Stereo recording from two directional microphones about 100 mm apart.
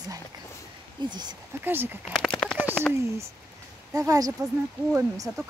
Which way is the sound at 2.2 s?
5° left (ahead or behind).